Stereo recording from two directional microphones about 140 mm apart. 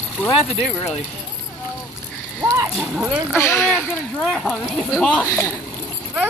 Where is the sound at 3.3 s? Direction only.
15° left (ahead or behind).